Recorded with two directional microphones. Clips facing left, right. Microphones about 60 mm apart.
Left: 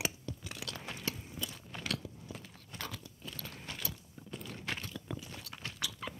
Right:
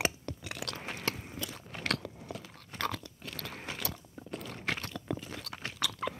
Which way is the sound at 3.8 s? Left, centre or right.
Right.